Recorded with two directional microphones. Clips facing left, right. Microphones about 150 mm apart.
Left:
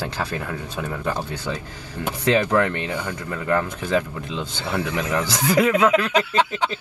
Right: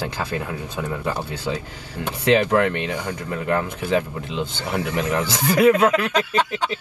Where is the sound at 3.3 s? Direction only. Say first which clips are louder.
Left 1 dB; 25° right (ahead or behind).